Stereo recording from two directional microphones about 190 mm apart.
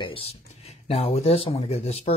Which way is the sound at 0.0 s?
30° left (ahead or behind).